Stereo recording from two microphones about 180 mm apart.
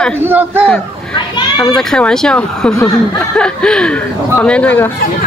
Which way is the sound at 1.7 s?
5° left (ahead or behind).